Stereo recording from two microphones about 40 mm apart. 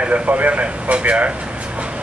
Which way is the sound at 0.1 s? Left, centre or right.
Right.